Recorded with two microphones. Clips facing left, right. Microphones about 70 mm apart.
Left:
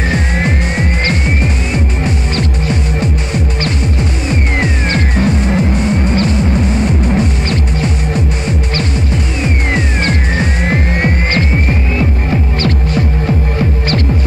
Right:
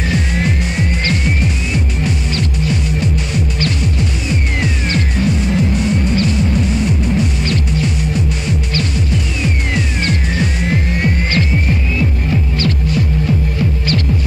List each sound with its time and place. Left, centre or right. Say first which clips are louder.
0.1 s music: left 2 dB; left
4.3 s music: left 5 dB; left
9.4 s music: left 5 dB; left